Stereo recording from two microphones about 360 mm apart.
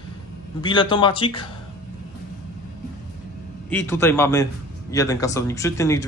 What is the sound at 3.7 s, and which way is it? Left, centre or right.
A man's voice, centre.